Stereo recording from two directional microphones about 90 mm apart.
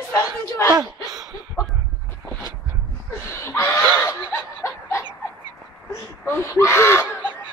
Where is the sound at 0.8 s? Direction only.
45° right (ahead or behind).